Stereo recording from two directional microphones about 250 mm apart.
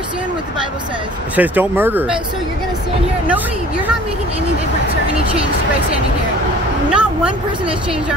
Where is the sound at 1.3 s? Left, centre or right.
Centre.